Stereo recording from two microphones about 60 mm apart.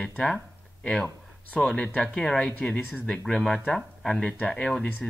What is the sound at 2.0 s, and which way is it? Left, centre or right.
Speech, centre.